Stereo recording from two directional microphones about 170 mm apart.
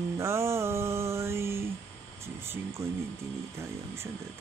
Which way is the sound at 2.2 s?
15° right (ahead or behind).